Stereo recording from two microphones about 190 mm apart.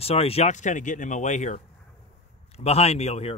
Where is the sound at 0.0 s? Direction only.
30° left (ahead or behind).